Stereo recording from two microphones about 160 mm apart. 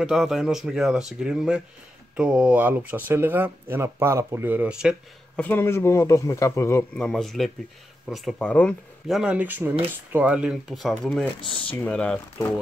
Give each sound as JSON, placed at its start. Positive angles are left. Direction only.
{"t": 0.0, "sound": "speech", "side_deg": -5}
{"t": 5.3, "sound": "speech", "side_deg": 10}
{"t": 7.0, "sound": "speech", "side_deg": 5}